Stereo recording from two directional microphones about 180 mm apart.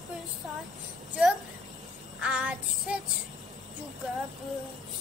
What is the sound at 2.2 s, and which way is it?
Child singing, 5° right (ahead or behind).